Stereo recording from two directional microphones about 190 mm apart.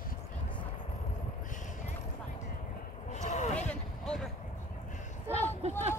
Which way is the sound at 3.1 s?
35° left (ahead or behind).